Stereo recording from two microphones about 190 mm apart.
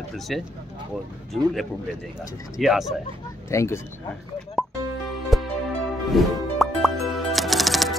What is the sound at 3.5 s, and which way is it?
Speech, 15° left (ahead or behind).